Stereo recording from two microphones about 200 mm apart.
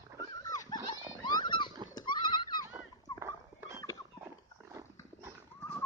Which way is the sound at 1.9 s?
25° left (ahead or behind).